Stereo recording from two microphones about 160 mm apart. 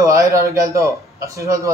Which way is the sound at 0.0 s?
20° right (ahead or behind).